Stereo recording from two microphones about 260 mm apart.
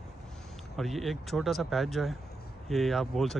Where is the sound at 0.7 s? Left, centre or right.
Centre.